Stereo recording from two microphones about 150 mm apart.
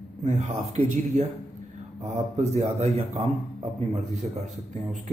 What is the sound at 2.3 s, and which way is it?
Speech, 45° right (ahead or behind).